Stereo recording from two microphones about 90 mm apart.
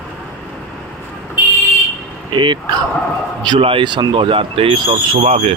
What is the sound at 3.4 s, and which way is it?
Speech, 70° right (ahead or behind).